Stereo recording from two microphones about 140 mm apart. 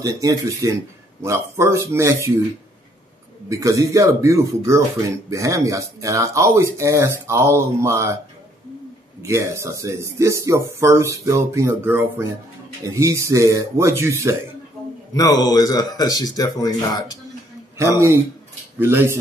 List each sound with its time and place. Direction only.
0.0 s speech: 25° right (ahead or behind)
3.4 s speech: 25° right (ahead or behind)
9.2 s speech: 20° right (ahead or behind)
15.1 s speech: 25° left (ahead or behind)
17.7 s speech: 20° right (ahead or behind)